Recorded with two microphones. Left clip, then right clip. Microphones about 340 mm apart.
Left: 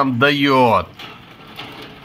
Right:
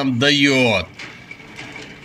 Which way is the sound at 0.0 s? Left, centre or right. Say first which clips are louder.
Left 1 dB; centre.